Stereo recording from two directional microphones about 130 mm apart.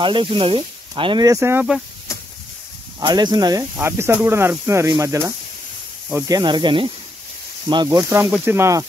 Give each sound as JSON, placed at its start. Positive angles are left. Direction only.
{"t": 0.0, "sound": "speech", "side_deg": -40}
{"t": 1.2, "sound": "speech", "side_deg": -25}
{"t": 3.0, "sound": "speech", "side_deg": -30}
{"t": 3.7, "sound": "speech", "side_deg": -15}
{"t": 8.0, "sound": "speech", "side_deg": -15}